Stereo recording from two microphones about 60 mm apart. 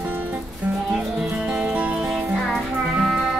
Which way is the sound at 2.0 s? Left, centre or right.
Centre.